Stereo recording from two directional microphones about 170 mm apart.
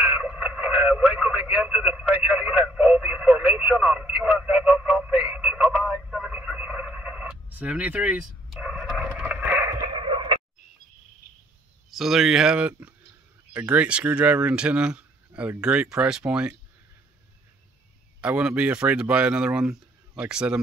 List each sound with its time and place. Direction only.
0.0 s radio: 5° right (ahead or behind)
7.5 s fowl: 10° right (ahead or behind)
9.9 s a sound: 30° right (ahead or behind)
12.0 s speech: centre (ahead or behind)
18.2 s speech: 10° right (ahead or behind)